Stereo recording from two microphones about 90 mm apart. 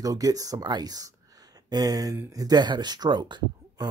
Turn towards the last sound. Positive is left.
turn(degrees=-55)  # may be behind; listen again after turning